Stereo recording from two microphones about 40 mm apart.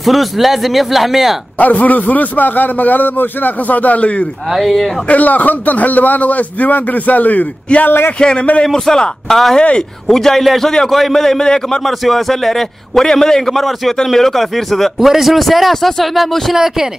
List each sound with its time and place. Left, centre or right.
0.0 s speech: centre
1.6 s a man's voice: left
4.5 s speech: centre
5.0 s a man's voice: left
8.2 s a man's voice: left
9.6 s a man's voice: left
10.0 s a man's voice: centre
11.8 s a man's voice: centre
16.5 s speech: centre